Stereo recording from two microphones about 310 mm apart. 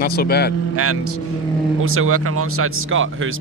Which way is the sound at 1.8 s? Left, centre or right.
Right.